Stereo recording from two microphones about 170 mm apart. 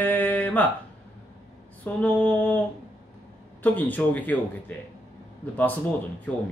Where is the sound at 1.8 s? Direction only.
10° left (ahead or behind).